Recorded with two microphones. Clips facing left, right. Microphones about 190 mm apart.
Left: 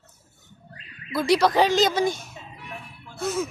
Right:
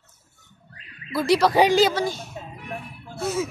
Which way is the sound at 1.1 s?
Centre (ahead or behind).